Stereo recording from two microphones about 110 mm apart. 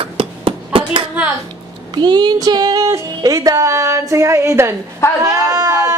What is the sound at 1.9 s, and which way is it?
Speech, 40° right (ahead or behind).